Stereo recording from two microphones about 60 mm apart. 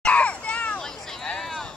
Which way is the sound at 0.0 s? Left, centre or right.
Left.